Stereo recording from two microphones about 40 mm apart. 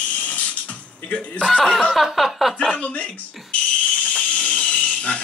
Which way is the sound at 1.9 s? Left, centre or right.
Centre.